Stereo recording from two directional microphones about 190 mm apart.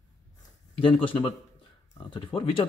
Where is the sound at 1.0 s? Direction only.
25° left (ahead or behind).